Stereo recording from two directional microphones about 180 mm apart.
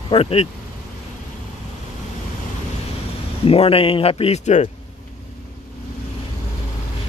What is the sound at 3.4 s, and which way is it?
Speech, 30° left (ahead or behind).